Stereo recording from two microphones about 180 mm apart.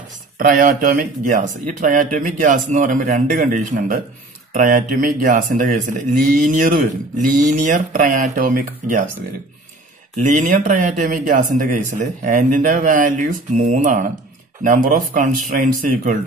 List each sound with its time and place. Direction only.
0.4 s speech: 50° right (ahead or behind)
10.1 s speech: 45° right (ahead or behind)